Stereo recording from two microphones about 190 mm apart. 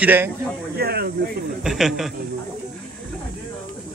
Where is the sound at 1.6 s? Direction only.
Centre (ahead or behind).